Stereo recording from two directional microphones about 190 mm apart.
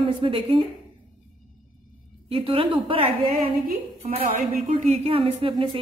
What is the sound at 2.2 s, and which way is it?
A woman's voice, 30° right (ahead or behind).